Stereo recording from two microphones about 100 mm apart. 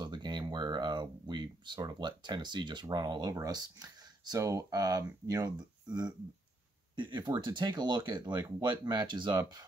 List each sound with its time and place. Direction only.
0.0 s speech: 50° right (ahead or behind)